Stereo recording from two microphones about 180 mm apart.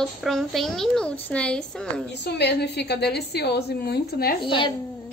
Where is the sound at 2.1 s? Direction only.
70° left (ahead or behind).